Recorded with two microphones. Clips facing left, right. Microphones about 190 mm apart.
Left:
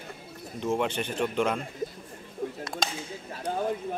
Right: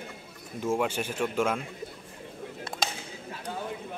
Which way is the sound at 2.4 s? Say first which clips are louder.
Left 3 dB; 45° left (ahead or behind).